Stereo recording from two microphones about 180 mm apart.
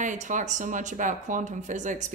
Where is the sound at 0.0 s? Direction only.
45° right (ahead or behind).